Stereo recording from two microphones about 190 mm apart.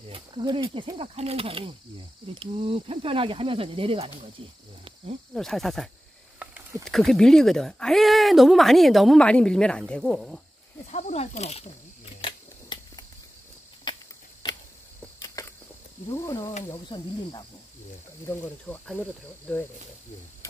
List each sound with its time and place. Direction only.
0.1 s speech: 25° right (ahead or behind)
5.3 s speech: centre (ahead or behind)
10.9 s speech: 35° left (ahead or behind)
12.2 s scissors: 25° left (ahead or behind)
13.9 s a sound: 25° left (ahead or behind)
15.1 s a sound: 20° left (ahead or behind)
16.1 s speech: 15° left (ahead or behind)
18.2 s speech: 10° left (ahead or behind)